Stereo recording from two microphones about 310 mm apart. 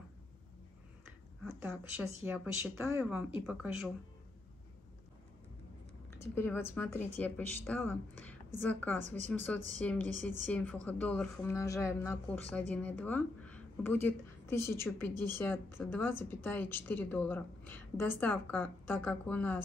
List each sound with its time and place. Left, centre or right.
1.4 s a woman's voice: centre
6.0 s a woman's voice: centre
9.0 s speech: right
9.8 s a woman's voice: centre